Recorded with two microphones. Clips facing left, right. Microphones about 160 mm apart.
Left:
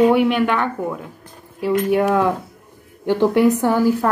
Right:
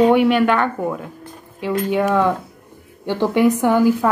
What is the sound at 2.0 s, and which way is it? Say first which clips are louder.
Speech: even; 5° left (ahead or behind).